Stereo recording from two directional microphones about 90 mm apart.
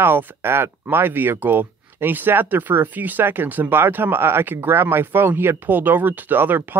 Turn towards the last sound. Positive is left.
turn(degrees=-20)  # may be behind; listen again after turning